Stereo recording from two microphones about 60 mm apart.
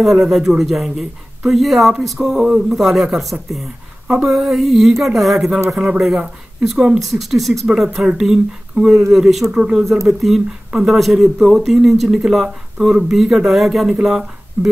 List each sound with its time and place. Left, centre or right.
0.0 s a man's voice: centre
10.0 s a man's voice: centre